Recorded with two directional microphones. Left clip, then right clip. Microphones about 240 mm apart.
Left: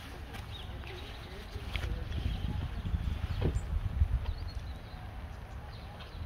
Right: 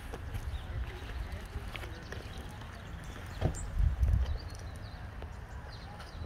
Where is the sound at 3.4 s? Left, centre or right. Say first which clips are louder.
Even; right.